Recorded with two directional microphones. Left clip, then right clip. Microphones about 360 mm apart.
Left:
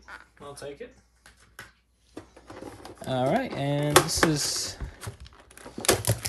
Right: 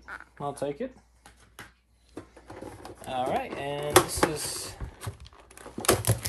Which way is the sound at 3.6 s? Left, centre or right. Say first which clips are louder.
Left 4 dB; left.